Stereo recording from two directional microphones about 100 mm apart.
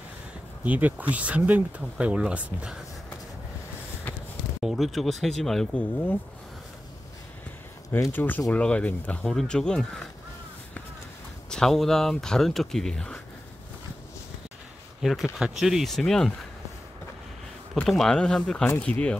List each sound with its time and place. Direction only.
0.7 s speech: 15° right (ahead or behind)
4.6 s speech: centre (ahead or behind)
5.8 s speech: 15° left (ahead or behind)
8.1 s speech: 20° left (ahead or behind)
11.5 s speech: 5° left (ahead or behind)
15.0 s speech: 5° right (ahead or behind)
17.8 s speech: 5° left (ahead or behind)